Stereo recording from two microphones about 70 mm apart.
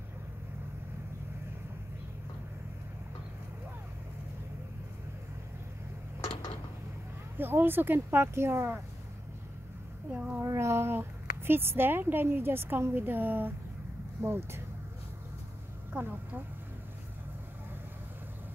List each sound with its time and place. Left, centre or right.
7.3 s a woman's voice: right
10.1 s a child's voice: centre
10.4 s a woman's voice: right
15.9 s a woman's voice: right